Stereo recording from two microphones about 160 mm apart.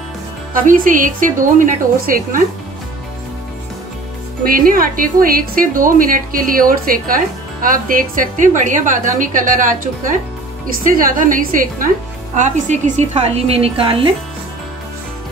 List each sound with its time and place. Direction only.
0.5 s a woman's voice: 60° right (ahead or behind)
4.5 s a woman's voice: 60° right (ahead or behind); by 14.1 s 35° right (ahead or behind)